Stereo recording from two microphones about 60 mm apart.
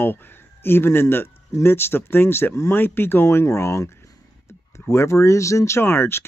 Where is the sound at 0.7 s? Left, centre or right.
Left.